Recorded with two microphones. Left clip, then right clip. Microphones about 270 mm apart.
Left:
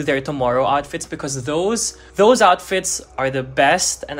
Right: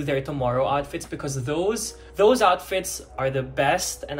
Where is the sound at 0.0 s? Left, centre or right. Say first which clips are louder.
Left 6 dB; left.